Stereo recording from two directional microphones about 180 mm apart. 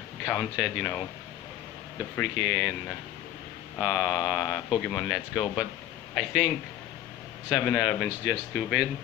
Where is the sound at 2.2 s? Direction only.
5° right (ahead or behind).